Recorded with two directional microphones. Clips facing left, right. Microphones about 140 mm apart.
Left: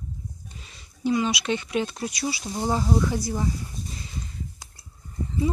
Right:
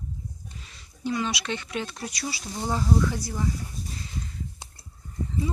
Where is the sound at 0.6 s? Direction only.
15° left (ahead or behind).